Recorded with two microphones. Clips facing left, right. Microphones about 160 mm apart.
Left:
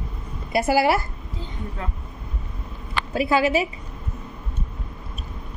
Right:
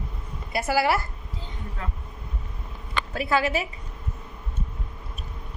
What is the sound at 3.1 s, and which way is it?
Speech, 15° left (ahead or behind).